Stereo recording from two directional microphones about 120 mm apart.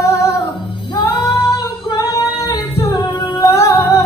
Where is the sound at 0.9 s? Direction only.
40° left (ahead or behind).